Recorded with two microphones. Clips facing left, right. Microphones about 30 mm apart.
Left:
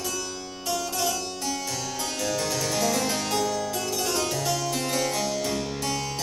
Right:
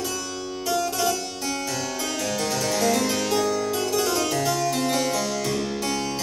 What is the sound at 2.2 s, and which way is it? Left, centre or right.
Harpsichord, centre.